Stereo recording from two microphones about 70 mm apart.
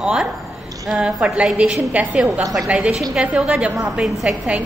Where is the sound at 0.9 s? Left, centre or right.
Centre.